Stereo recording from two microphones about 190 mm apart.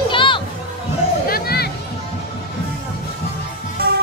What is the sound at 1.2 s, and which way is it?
Music, 55° left (ahead or behind).